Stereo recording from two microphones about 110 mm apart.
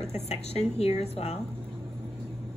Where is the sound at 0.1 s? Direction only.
80° left.